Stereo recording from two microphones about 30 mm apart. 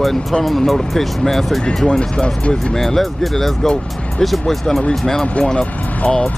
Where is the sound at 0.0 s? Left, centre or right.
Centre.